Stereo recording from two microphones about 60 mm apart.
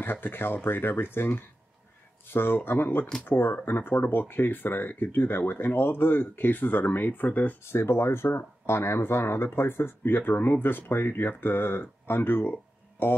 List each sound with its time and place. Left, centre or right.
0.0 s speech: left
7.7 s speech: left